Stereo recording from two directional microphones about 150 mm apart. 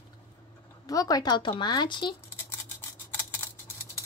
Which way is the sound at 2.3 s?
15° left (ahead or behind).